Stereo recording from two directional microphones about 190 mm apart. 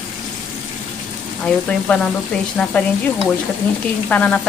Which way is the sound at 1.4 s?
5° left (ahead or behind).